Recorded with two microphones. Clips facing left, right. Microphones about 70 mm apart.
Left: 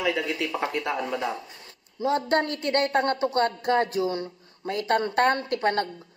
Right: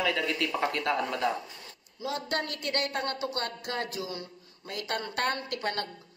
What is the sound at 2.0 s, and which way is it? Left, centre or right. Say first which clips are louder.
A woman's voice: left 9 dB; left.